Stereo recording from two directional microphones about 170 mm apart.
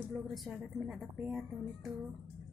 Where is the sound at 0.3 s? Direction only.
Centre (ahead or behind).